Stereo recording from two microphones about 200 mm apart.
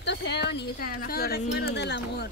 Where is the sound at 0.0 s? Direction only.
60° left (ahead or behind).